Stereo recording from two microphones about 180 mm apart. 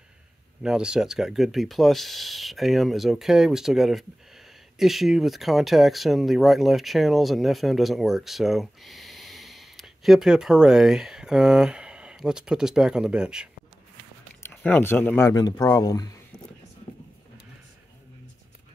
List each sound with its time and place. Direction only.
0.6 s speech: 5° right (ahead or behind)
14.5 s speech: 10° left (ahead or behind)